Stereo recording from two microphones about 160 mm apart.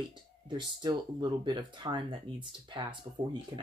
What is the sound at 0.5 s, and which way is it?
Speech, 25° right (ahead or behind).